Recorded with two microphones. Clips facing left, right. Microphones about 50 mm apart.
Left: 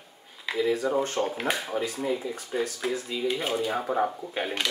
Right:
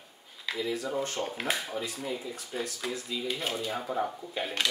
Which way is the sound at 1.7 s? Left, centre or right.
Left.